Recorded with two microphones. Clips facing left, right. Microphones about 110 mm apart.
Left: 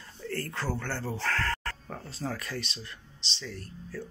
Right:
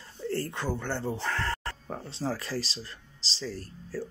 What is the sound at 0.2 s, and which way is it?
Speech, 25° right (ahead or behind).